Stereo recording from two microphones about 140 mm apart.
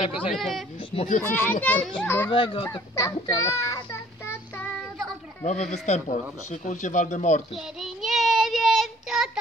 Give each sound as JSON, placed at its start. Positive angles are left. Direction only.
{"t": 0.3, "sound": "a man's voice", "side_deg": 0}
{"t": 1.2, "sound": "a child's voice", "side_deg": 15}
{"t": 2.3, "sound": "speech", "side_deg": 40}
{"t": 2.7, "sound": "child singing", "side_deg": 25}
{"t": 5.4, "sound": "speech", "side_deg": 55}
{"t": 7.5, "sound": "child singing", "side_deg": 0}